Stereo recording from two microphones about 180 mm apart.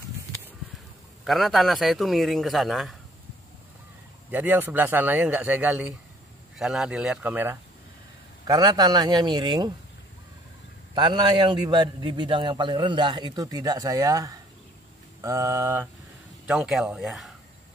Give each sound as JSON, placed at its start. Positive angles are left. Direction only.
{"t": 1.2, "sound": "a man's voice", "side_deg": 0}
{"t": 4.3, "sound": "a man's voice", "side_deg": -10}
{"t": 8.5, "sound": "a man's voice", "side_deg": -20}
{"t": 11.0, "sound": "a man's voice", "side_deg": -25}
{"t": 16.4, "sound": "a man's voice", "side_deg": -5}